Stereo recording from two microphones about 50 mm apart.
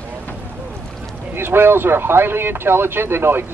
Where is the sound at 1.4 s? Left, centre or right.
Right.